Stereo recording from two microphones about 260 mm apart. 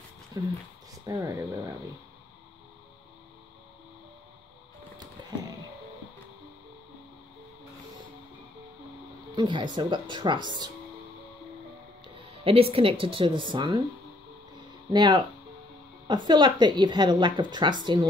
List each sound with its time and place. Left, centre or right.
0.3 s a woman's voice: centre
9.3 s a woman's voice: centre
12.4 s a woman's voice: right
14.9 s a woman's voice: centre